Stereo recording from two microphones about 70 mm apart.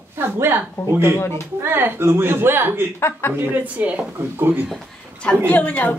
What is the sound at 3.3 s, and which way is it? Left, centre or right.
Speech, right.